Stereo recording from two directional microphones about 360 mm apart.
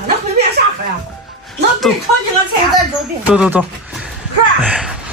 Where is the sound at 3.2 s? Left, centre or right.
Centre.